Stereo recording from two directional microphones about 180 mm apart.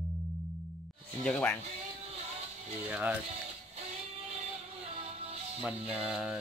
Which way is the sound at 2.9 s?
10° right (ahead or behind).